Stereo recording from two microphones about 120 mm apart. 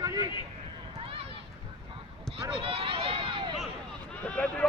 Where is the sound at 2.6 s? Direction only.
50° right (ahead or behind).